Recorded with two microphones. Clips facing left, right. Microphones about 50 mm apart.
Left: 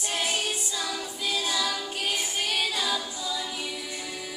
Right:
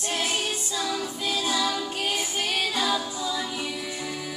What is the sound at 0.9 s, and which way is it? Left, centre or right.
Music, centre.